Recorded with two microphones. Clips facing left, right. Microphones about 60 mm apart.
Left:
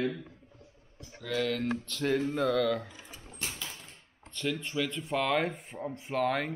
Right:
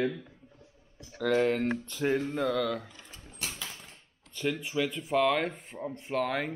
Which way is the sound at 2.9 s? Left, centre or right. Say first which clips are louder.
Left 1 dB; centre.